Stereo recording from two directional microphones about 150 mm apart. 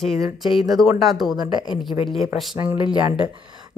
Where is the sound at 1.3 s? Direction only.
30° right (ahead or behind).